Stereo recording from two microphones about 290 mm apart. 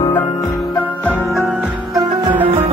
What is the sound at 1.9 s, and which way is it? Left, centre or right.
Music, centre.